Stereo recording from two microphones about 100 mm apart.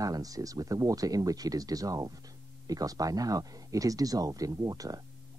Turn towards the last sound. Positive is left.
turn(degrees=-35)  # may be behind; listen again after turning